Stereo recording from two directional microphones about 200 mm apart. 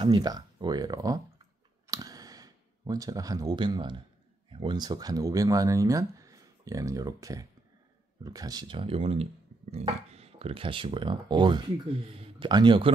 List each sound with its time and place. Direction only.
0.0 s speech: 20° right (ahead or behind)
1.9 s a sound: 15° right (ahead or behind)
4.5 s speech: 25° right (ahead or behind)